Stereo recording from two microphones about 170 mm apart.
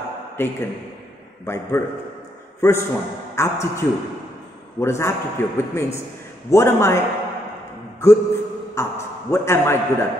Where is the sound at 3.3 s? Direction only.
15° left (ahead or behind).